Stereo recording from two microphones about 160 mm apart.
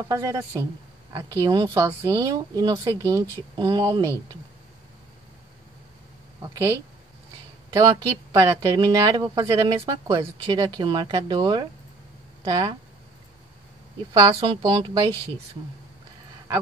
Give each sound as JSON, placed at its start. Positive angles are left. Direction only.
{"t": 0.1, "sound": "speech", "side_deg": -20}
{"t": 6.4, "sound": "speech", "side_deg": -20}
{"t": 7.7, "sound": "speech", "side_deg": -20}
{"t": 14.1, "sound": "a woman's voice", "side_deg": -30}